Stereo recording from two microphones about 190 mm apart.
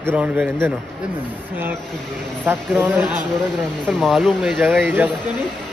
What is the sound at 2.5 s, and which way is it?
Speech, 10° right (ahead or behind).